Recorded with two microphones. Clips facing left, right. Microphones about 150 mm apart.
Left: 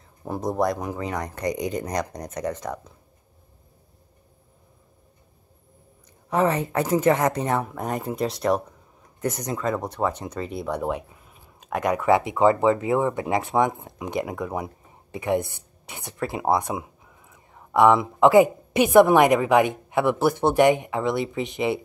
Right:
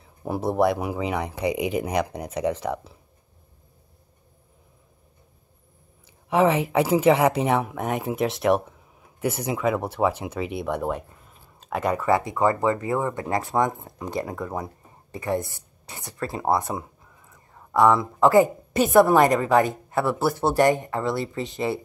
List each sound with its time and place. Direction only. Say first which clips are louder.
0.2 s speech: right 3 dB; 5° right (ahead or behind)
6.3 s speech: right 2 dB; 5° right (ahead or behind); by 13.1 s 15° left (ahead or behind)
13.5 s speech: left 1 dB; centre (ahead or behind); by 16.2 s 20° left (ahead or behind)
16.4 s speech: even; centre (ahead or behind)
16.8 s a sound: left 1 dB; 10° left (ahead or behind)
17.7 s a woman's voice: left 1 dB; 20° left (ahead or behind)